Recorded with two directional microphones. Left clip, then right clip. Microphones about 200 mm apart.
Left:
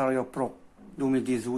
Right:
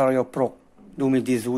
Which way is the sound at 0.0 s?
35° right (ahead or behind).